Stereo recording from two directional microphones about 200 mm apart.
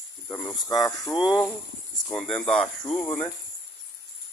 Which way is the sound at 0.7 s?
15° left (ahead or behind).